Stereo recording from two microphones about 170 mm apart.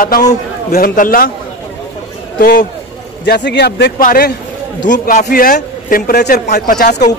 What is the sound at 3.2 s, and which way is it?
A man's voice, 85° left.